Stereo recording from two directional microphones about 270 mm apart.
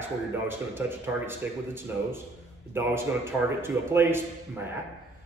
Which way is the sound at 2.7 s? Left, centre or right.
Centre.